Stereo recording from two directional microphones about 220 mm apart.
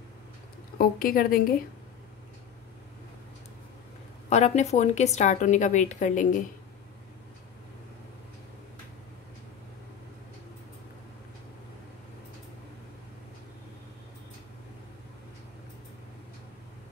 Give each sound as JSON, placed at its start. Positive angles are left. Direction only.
{"t": 0.7, "sound": "a woman's voice", "side_deg": 40}
{"t": 4.3, "sound": "a woman's voice", "side_deg": 30}